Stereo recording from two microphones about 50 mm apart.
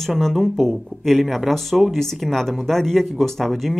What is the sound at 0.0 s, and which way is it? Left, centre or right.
Speech, centre.